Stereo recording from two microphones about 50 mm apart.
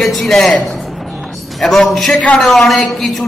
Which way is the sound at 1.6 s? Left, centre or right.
Centre.